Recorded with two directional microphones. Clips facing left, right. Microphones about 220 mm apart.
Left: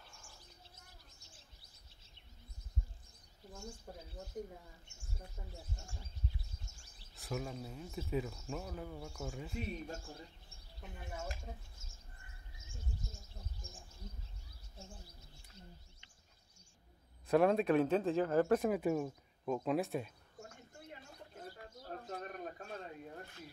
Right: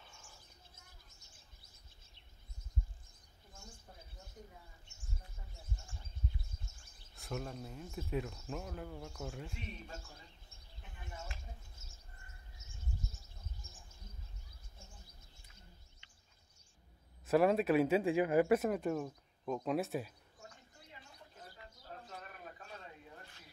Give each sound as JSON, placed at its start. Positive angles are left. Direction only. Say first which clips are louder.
{"t": 0.0, "sound": "bird", "louder": "even", "side_deg": 0}
{"t": 7.2, "sound": "speech", "louder": "left 1 dB", "side_deg": 5}
{"t": 10.8, "sound": "speech", "louder": "left 5 dB", "side_deg": 40}
{"t": 17.3, "sound": "speech", "louder": "even", "side_deg": -5}
{"t": 18.7, "sound": "speech", "louder": "left 2 dB", "side_deg": 5}
{"t": 22.0, "sound": "a sound", "louder": "left 7 dB", "side_deg": 45}